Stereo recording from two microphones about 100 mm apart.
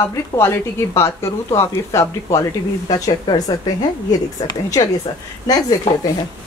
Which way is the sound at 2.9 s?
40° left (ahead or behind).